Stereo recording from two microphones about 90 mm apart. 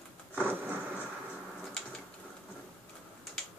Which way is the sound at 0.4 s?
25° right (ahead or behind).